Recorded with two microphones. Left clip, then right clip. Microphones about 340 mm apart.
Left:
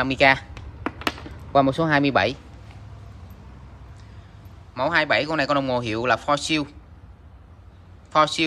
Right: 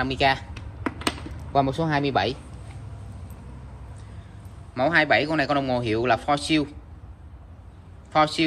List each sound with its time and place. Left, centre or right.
0.0 s speech: centre
1.5 s speech: left
4.7 s a man's voice: centre
8.1 s a man's voice: centre